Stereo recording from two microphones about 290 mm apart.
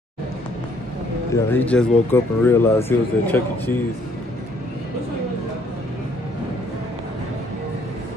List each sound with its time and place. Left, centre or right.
1.3 s speech: centre